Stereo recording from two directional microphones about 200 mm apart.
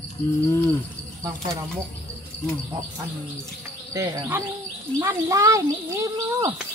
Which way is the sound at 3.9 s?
15° right (ahead or behind).